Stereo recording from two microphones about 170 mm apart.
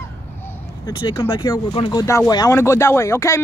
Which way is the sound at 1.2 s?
20° left (ahead or behind).